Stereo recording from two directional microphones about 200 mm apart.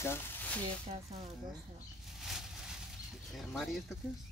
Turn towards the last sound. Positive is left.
turn(degrees=0)  # may be behind; listen again after turning